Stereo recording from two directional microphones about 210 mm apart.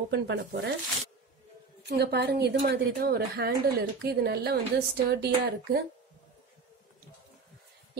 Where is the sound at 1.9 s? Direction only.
50° right (ahead or behind).